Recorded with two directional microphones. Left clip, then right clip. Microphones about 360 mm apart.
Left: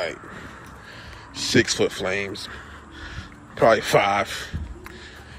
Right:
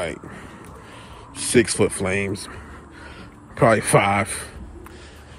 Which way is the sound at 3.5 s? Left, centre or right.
Right.